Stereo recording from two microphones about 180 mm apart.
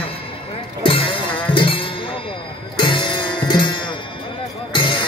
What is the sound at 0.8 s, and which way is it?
Music, 30° left (ahead or behind).